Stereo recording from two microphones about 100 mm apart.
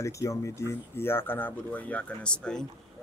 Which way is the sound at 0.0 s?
30° left (ahead or behind).